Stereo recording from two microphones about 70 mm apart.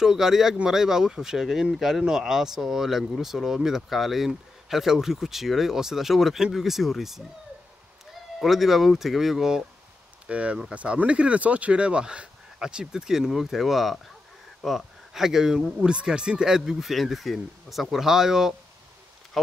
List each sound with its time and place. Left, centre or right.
0.0 s speech: centre
8.4 s speech: centre
10.2 s speech: centre